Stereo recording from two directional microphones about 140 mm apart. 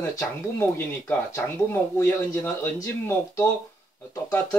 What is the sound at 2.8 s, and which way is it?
Speech, 20° left (ahead or behind).